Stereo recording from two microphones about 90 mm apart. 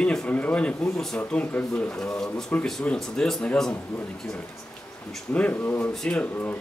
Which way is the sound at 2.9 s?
5° left (ahead or behind).